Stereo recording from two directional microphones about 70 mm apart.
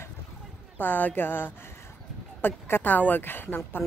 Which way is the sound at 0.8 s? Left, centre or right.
Left.